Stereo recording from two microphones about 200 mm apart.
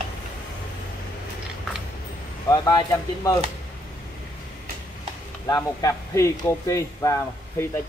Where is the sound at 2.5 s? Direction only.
20° left (ahead or behind).